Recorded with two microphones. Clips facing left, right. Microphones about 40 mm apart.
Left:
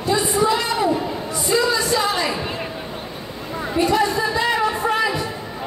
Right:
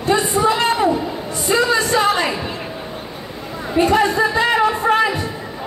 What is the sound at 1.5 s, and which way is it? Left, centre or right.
Music, right.